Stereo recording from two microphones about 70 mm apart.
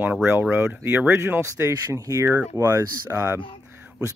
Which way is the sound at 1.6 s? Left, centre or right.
Right.